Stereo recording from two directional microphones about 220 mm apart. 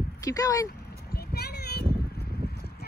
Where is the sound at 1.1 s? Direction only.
45° left (ahead or behind).